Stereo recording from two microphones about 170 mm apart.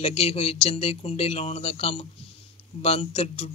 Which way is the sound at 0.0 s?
35° left (ahead or behind).